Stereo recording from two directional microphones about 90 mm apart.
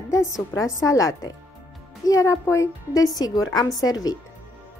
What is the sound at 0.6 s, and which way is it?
A woman's voice, 40° left (ahead or behind).